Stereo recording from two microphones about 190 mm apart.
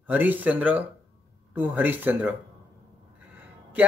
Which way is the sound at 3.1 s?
10° right (ahead or behind).